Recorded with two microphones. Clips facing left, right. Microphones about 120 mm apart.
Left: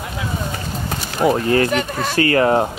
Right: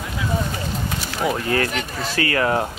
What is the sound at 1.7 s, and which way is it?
Speech, 50° left (ahead or behind).